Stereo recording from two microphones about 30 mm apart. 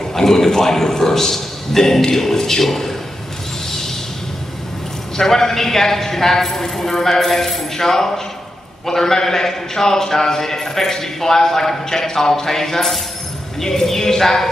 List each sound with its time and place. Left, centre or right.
0.1 s a man's voice: centre
5.1 s a man's voice: centre